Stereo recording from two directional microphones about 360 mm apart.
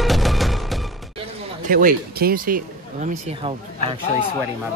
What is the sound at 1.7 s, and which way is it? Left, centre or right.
Speech, right.